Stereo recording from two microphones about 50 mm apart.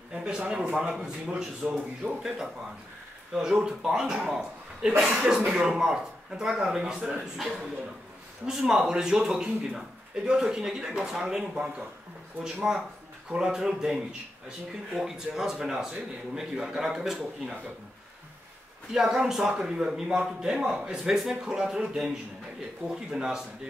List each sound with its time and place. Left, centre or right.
0.1 s a man's voice: centre
18.9 s a man's voice: centre